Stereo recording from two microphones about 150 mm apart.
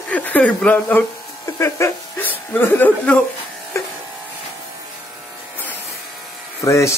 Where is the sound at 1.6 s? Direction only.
20° left (ahead or behind).